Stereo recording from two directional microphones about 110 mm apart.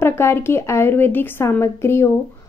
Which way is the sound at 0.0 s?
20° left (ahead or behind).